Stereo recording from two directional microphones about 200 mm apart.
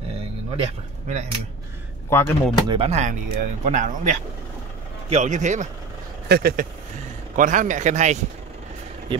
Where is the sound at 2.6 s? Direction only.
30° right (ahead or behind).